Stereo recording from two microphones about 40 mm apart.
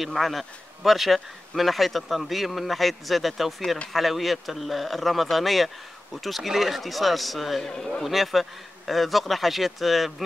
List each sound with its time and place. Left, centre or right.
0.0 s speech: centre
7.6 s a man's voice: centre
8.0 s speech: centre